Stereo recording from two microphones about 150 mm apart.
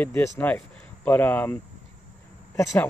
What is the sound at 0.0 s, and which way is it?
Speech, 10° left (ahead or behind).